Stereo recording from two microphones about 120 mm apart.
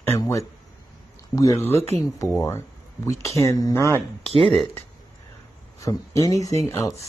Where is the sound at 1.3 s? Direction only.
30° left (ahead or behind).